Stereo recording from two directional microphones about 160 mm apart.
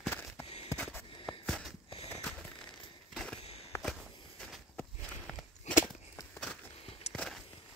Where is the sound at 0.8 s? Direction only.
15° left (ahead or behind).